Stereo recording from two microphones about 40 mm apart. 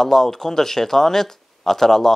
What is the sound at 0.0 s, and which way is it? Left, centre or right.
Speech, centre.